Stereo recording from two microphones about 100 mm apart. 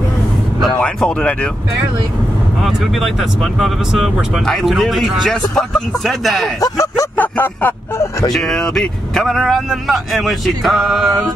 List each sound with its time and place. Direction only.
0.7 s speech: 10° left (ahead or behind)
2.6 s speech: centre (ahead or behind)
6.6 s speech: 35° left (ahead or behind)
7.2 s speech: 20° left (ahead or behind)
8.3 s speech: 5° left (ahead or behind)